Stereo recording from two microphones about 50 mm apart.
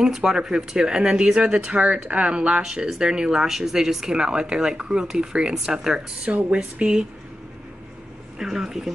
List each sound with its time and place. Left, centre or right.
0.0 s speech: centre
8.4 s speech: centre